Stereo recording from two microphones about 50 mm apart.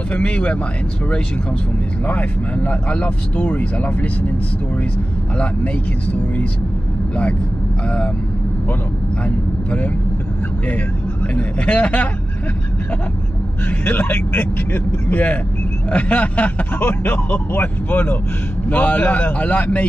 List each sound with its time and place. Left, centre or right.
0.1 s speech: left
2.0 s speech: left
5.4 s speech: left
9.7 s speech: left
11.3 s speech: left
13.7 s speech: left
15.9 s speech: left